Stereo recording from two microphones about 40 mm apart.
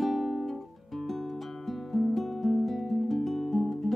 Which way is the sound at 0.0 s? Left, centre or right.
Centre.